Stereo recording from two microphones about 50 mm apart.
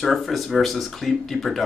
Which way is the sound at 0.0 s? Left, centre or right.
Centre.